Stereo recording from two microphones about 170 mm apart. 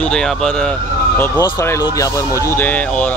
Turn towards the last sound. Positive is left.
turn(degrees=5)  # may be behind; listen again after turning